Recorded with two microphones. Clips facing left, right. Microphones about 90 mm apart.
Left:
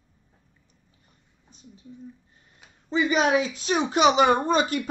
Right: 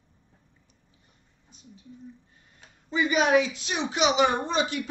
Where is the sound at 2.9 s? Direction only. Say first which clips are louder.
Left 1 dB; 35° left (ahead or behind).